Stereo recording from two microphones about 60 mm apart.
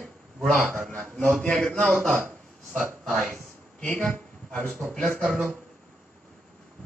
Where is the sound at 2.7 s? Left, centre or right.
Left.